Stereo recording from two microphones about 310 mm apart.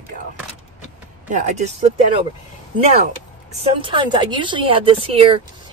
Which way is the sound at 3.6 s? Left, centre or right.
Centre.